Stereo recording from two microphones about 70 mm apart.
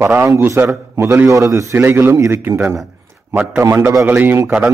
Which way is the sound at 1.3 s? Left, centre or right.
Right.